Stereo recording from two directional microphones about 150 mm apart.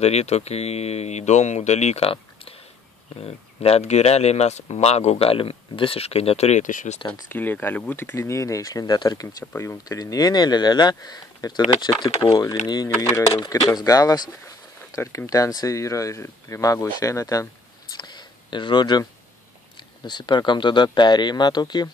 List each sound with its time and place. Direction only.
0.0 s speech: 45° left (ahead or behind)
7.2 s speech: 15° left (ahead or behind)
9.4 s speech: 15° left (ahead or behind)